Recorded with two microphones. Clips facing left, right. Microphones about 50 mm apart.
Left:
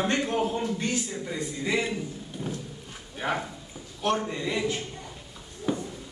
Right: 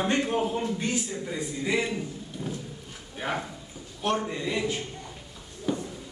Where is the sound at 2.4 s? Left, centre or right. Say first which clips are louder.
Left 1 dB; centre.